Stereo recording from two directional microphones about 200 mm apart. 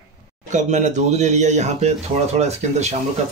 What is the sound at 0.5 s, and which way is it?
Speech, 35° right (ahead or behind).